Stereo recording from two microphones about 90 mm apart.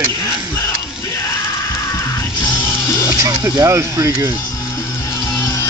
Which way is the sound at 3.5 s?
35° right (ahead or behind).